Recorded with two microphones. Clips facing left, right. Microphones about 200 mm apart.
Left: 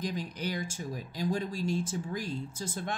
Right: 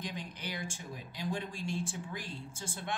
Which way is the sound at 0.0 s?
40° left (ahead or behind).